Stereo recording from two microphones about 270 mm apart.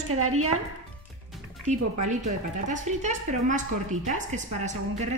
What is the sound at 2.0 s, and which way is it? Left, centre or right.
A woman's voice, right.